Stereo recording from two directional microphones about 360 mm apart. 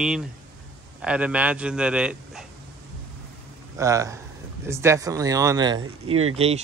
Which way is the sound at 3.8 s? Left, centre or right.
Centre.